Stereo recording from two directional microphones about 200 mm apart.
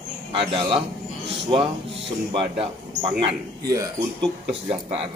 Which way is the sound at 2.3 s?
25° right (ahead or behind).